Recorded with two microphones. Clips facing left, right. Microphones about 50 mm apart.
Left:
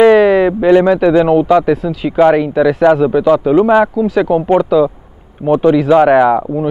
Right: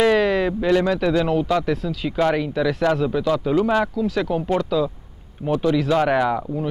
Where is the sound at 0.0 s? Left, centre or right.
Centre.